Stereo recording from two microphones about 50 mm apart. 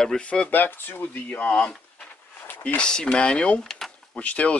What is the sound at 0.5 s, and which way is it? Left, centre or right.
Speech, left.